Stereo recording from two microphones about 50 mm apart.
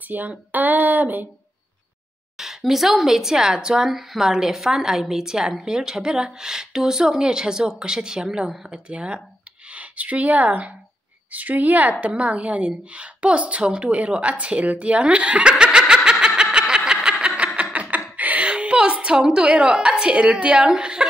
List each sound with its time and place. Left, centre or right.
0.1 s speech: right
2.3 s a woman's voice: centre; by 15.5 s right
15.5 s snicker: centre
17.7 s a sound: right
19.2 s a woman's voice: centre